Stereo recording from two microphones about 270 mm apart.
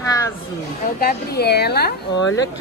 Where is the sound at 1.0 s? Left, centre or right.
Left.